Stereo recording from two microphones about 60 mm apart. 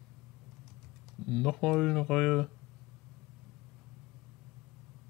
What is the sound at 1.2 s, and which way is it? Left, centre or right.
Speech, centre.